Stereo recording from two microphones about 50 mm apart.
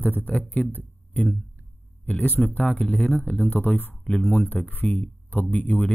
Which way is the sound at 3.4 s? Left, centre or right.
Left.